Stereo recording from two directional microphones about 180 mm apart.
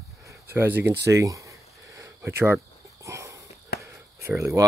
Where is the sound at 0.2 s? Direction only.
15° right (ahead or behind).